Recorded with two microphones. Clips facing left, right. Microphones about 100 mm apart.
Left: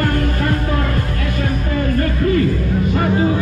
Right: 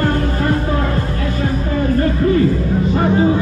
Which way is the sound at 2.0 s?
25° right (ahead or behind).